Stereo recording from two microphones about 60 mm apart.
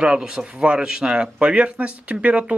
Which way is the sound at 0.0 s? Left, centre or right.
Centre.